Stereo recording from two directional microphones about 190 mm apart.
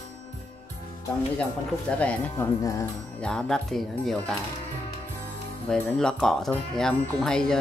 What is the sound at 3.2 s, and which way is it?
Speech, 5° left (ahead or behind).